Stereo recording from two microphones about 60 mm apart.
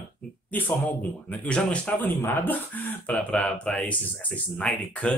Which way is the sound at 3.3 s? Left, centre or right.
Left.